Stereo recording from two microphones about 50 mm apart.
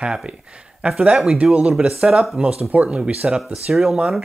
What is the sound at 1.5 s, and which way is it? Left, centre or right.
Speech, centre.